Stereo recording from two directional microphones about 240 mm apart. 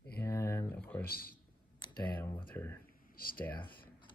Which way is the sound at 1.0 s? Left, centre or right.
Left.